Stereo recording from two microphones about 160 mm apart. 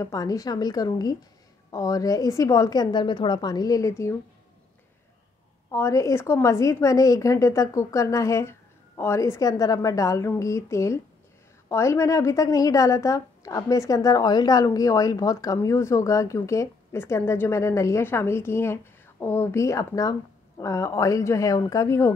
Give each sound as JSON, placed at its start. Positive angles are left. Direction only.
{"t": 0.0, "sound": "a woman's voice", "side_deg": 20}
{"t": 5.7, "sound": "a woman's voice", "side_deg": 20}